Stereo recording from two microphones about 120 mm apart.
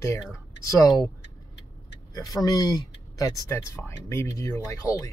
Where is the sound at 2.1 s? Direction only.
30° left (ahead or behind).